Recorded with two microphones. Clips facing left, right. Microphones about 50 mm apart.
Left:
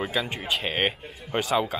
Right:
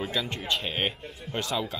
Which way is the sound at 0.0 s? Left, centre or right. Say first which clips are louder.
Left 3 dB; centre.